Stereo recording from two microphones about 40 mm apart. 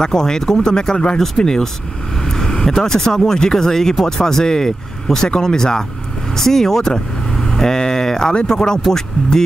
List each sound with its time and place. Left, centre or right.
0.0 s speech: centre
6.3 s vehicle: centre
8.3 s speech: left